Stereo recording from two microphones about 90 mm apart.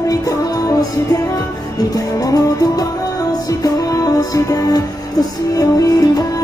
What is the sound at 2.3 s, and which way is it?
Music, 45° left (ahead or behind).